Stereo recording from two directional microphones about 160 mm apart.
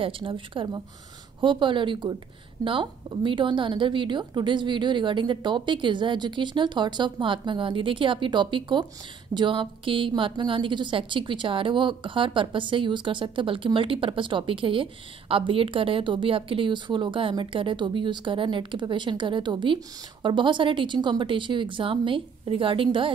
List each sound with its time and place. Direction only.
0.0 s a woman's voice: 30° right (ahead or behind)